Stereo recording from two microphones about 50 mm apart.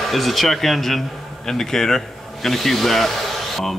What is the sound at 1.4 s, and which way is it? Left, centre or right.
A man's voice, centre.